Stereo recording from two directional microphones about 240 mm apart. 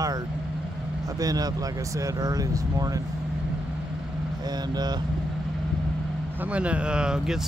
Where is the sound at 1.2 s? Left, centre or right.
Centre.